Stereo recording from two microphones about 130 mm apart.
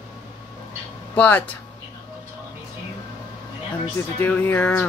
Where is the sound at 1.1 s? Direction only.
10° left (ahead or behind).